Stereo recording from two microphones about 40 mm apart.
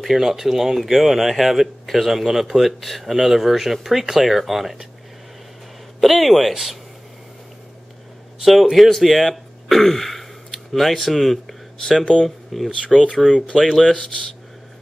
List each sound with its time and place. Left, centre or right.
0.0 s speech: centre
5.9 s speech: centre
8.5 s speech: centre
12.0 s speech: centre
12.5 s speech: centre